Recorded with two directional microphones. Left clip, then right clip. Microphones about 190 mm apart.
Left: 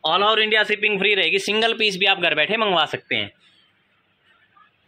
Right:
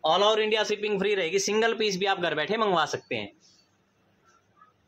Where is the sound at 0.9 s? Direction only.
10° left (ahead or behind).